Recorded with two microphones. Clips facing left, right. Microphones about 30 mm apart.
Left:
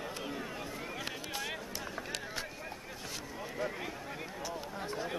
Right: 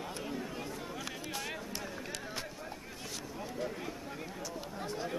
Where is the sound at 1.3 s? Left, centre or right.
Centre.